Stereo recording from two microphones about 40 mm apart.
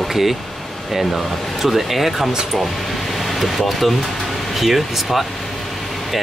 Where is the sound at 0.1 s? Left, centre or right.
Centre.